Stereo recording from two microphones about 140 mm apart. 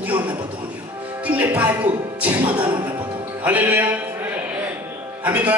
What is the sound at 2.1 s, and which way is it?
Music, 10° right (ahead or behind).